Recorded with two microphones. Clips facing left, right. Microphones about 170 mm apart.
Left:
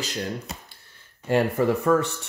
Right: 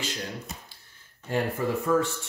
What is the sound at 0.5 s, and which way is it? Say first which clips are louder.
Speech: left 3 dB; 75° left (ahead or behind).